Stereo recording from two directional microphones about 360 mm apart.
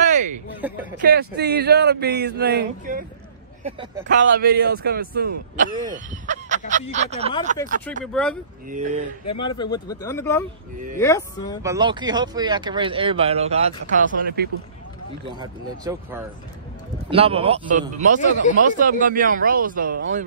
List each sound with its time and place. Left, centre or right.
0.0 s a sound: right
0.6 s speech: centre
1.0 s speech: right
4.3 s speech: right
8.0 s speech: centre
8.6 s speech: right
9.2 s speech: left
9.6 s speech: centre
11.6 s speech: centre
15.2 s speech: centre
18.2 s speech: left
18.6 s speech: right